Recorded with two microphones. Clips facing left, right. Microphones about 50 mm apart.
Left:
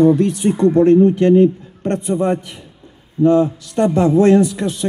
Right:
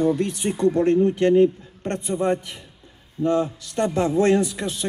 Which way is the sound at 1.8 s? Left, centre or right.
Left.